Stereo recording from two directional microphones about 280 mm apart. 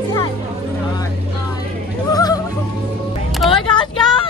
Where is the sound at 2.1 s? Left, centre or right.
Centre.